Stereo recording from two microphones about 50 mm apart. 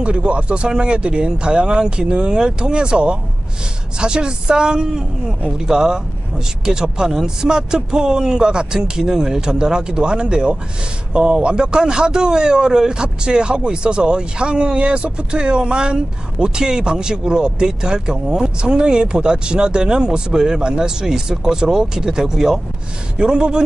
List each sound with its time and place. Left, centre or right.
0.0 s speech: right